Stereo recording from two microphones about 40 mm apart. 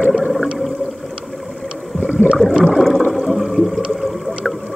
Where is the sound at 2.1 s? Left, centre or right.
Right.